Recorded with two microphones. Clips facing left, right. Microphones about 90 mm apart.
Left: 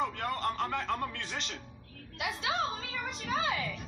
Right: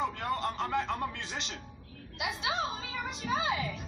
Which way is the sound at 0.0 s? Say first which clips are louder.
Even; 20° right (ahead or behind).